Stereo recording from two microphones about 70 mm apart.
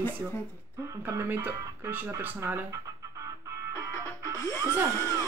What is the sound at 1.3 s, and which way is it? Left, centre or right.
Speech, right.